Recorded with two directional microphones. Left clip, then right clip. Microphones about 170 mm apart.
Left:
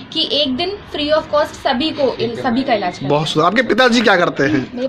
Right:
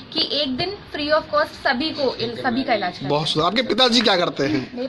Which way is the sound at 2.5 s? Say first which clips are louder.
Left 4 dB; 5° left (ahead or behind).